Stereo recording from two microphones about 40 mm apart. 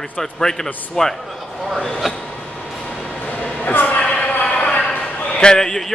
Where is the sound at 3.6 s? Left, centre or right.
Left.